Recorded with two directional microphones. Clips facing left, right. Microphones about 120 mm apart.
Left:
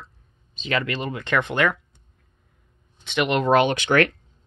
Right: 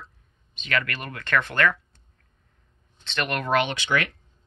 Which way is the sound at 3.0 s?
15° left (ahead or behind).